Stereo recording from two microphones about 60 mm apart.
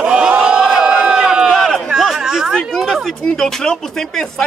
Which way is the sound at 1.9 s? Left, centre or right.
Centre.